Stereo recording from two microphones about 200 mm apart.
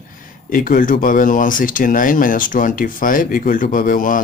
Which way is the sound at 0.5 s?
45° left (ahead or behind).